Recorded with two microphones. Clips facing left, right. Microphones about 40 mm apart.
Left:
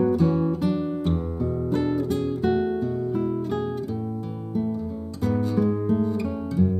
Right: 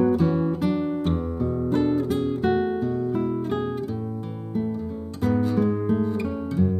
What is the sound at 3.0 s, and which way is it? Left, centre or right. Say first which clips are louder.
Music: right 1 dB; right.